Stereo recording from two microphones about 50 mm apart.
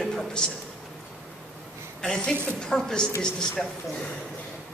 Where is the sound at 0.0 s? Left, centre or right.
Centre.